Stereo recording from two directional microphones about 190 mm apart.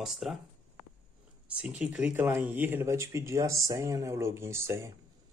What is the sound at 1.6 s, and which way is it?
Speech, 5° right (ahead or behind).